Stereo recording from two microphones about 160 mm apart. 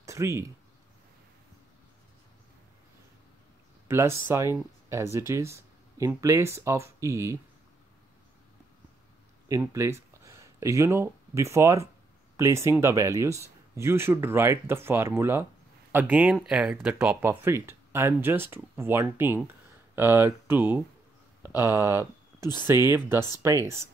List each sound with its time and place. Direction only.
0.0 s a sound: 20° right (ahead or behind)
3.8 s speech: 15° right (ahead or behind)
9.6 s speech: 15° right (ahead or behind)